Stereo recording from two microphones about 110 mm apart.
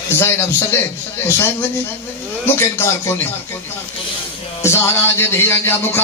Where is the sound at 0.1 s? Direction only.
20° left (ahead or behind).